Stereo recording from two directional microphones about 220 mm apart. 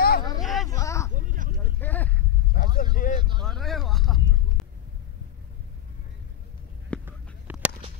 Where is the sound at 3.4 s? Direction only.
Centre (ahead or behind).